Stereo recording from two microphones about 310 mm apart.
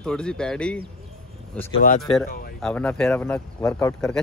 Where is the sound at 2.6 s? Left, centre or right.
Centre.